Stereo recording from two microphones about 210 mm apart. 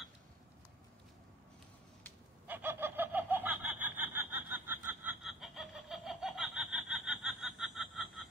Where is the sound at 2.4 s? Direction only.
10° right (ahead or behind).